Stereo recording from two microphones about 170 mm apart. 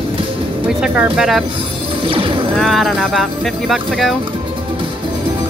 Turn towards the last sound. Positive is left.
turn(degrees=0)  # may be behind; listen again after turning